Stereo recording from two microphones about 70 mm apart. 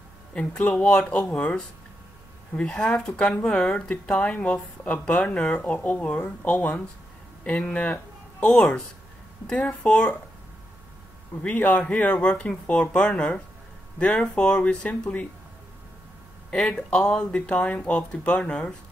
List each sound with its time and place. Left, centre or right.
0.3 s speech: centre
11.4 s speech: left
16.4 s speech: centre